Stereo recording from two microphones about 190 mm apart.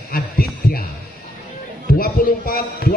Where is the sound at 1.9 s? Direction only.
50° left (ahead or behind).